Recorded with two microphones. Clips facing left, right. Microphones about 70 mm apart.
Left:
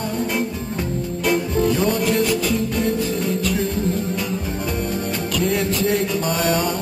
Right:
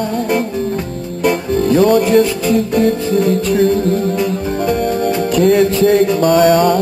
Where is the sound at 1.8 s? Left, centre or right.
Right.